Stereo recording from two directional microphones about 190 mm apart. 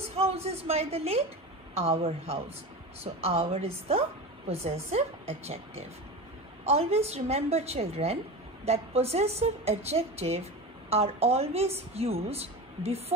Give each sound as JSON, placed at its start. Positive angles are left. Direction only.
{"t": 0.1, "sound": "a woman's voice", "side_deg": -35}